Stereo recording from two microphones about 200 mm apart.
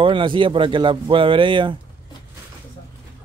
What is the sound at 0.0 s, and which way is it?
Speech, 25° right (ahead or behind).